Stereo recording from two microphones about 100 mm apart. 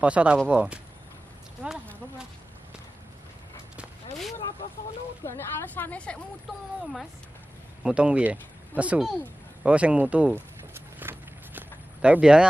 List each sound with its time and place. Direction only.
0.0 s speech: 10° right (ahead or behind)
5.2 s a sound: 25° left (ahead or behind)
5.9 s speech: 10° left (ahead or behind)
7.8 s speech: 10° right (ahead or behind)
10.6 s walk: 25° right (ahead or behind)